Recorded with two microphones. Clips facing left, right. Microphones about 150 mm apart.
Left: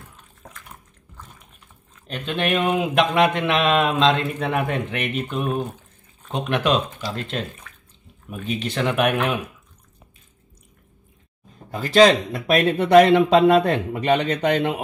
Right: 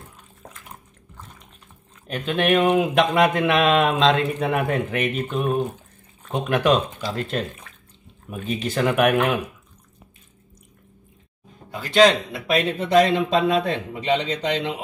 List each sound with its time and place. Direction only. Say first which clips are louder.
2.0 s speech: right 3 dB; 5° right (ahead or behind)
11.7 s speech: left 2 dB; 40° left (ahead or behind)
12.7 s speech: left 6 dB; 65° left (ahead or behind)